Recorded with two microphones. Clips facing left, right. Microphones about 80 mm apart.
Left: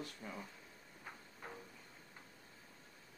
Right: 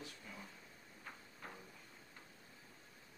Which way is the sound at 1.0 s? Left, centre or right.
Centre.